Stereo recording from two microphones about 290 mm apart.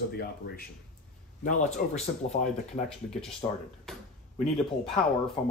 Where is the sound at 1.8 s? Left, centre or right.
Left.